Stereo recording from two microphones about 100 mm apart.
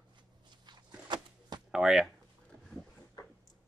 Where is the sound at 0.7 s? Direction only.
45° right (ahead or behind).